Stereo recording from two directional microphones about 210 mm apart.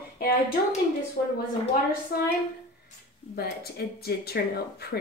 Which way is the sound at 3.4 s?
50° left (ahead or behind).